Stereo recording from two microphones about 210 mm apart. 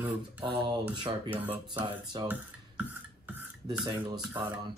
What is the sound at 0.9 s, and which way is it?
Speech, 20° right (ahead or behind).